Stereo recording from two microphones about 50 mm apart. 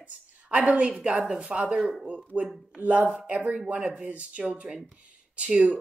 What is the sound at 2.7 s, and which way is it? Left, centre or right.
A woman's voice, right.